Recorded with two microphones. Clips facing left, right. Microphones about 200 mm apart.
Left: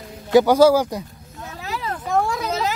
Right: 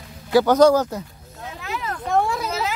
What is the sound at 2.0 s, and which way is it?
Vehicle, centre (ahead or behind).